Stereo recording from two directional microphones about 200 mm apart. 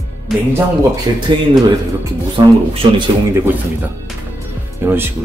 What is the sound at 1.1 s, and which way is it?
Speech, 20° right (ahead or behind).